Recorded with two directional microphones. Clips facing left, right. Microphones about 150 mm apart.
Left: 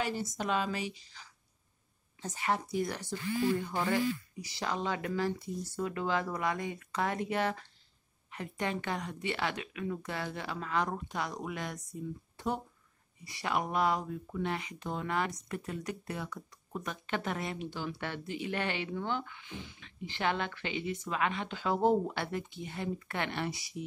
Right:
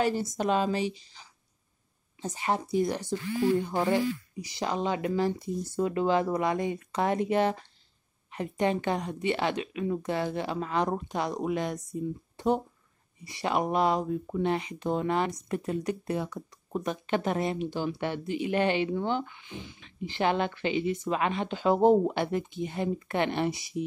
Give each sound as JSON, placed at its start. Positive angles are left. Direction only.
{"t": 0.0, "sound": "a woman's voice", "side_deg": -35}